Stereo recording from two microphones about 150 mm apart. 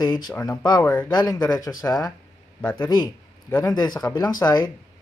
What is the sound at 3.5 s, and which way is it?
A man's voice, 25° left (ahead or behind).